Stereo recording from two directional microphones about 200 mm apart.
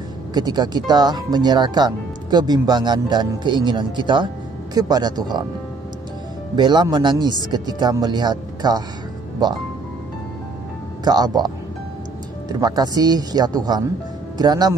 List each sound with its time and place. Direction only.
0.3 s speech: 20° right (ahead or behind)
6.5 s speech: 20° right (ahead or behind)
11.1 s speech: 20° right (ahead or behind)